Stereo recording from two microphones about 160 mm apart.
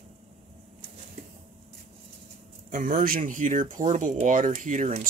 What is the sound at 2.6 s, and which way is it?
Speech, 55° right (ahead or behind).